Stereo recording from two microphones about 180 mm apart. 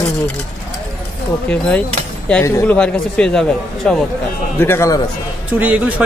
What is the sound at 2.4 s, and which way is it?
Speech, 15° left (ahead or behind).